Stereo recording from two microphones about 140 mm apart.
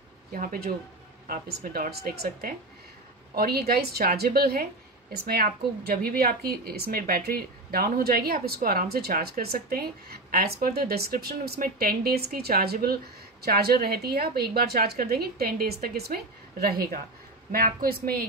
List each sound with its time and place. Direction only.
0.3 s a woman's voice: 90° right